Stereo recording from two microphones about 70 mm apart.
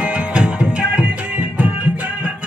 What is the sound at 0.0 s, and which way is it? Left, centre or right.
Music, centre.